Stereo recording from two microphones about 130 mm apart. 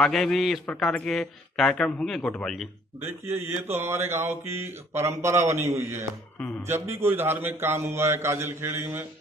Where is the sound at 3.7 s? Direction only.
20° right (ahead or behind).